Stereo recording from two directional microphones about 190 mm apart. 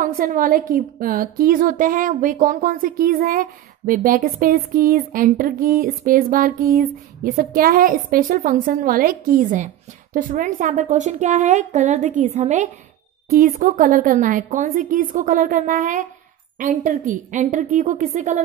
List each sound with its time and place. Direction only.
0.0 s a woman's voice: 45° right (ahead or behind)